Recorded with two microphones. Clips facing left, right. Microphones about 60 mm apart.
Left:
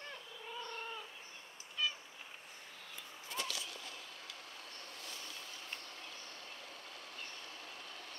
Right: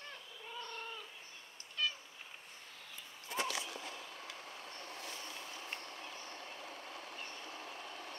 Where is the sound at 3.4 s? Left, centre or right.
Right.